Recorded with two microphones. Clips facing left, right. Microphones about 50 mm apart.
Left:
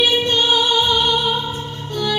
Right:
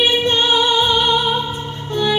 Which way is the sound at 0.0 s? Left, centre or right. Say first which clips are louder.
Right 1 dB; right.